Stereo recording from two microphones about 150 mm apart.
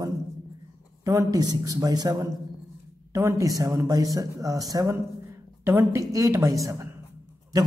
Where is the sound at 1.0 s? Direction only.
25° right (ahead or behind).